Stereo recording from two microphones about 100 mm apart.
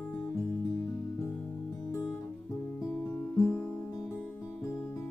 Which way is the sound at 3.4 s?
15° left (ahead or behind).